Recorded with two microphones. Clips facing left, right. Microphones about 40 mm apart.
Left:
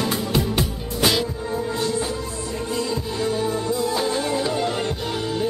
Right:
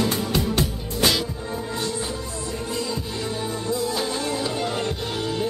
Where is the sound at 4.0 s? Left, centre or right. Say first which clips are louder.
Left 3 dB; centre.